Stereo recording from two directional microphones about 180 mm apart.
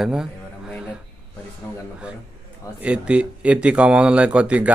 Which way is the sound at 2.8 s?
5° right (ahead or behind).